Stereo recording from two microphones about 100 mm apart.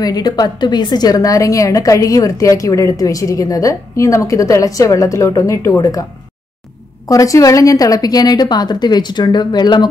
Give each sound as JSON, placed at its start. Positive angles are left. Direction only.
{"t": 0.0, "sound": "a woman's voice", "side_deg": 40}
{"t": 7.1, "sound": "a woman's voice", "side_deg": 35}